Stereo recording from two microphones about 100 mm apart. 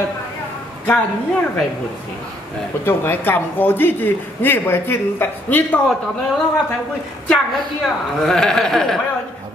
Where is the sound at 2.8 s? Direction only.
25° left (ahead or behind).